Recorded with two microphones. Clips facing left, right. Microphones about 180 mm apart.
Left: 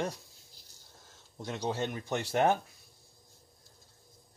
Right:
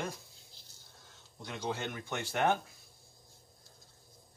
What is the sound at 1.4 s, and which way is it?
Speech, 40° left (ahead or behind).